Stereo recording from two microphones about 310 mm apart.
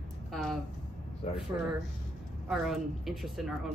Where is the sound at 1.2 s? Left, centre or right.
Left.